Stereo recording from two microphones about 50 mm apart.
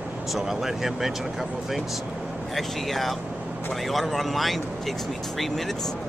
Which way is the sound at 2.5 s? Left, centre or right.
Centre.